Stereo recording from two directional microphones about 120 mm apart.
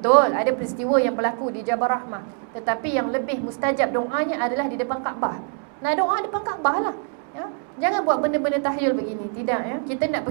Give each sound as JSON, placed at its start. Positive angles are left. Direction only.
{"t": 0.0, "sound": "a woman's voice", "side_deg": -20}